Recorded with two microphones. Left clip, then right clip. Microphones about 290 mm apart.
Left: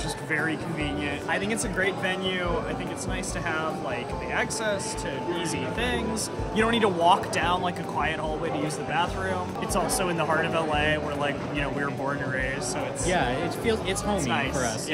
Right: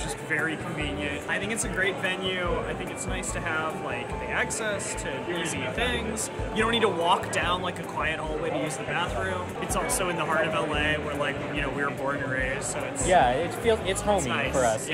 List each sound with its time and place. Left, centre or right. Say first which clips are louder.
1.3 s speech: left 2 dB; centre
6.5 s speech: left 1 dB; centre
9.8 s speech: even; centre
13.1 s speech: right 6 dB; centre
14.3 s speech: even; centre